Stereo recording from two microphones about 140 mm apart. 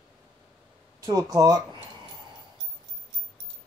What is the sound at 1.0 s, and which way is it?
Speech, 25° right (ahead or behind).